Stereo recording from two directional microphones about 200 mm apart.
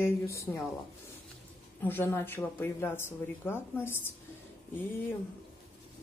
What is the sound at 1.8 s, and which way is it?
Speech, 10° left (ahead or behind).